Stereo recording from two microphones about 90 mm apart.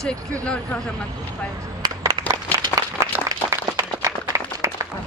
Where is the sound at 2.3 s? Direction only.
40° right (ahead or behind).